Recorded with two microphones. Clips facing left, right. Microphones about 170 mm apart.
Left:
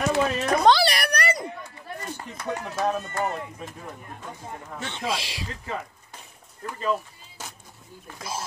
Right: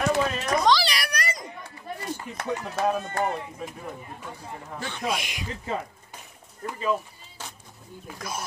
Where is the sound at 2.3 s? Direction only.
10° right (ahead or behind).